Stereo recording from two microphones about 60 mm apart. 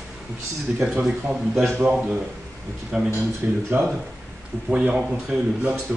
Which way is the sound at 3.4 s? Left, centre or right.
Right.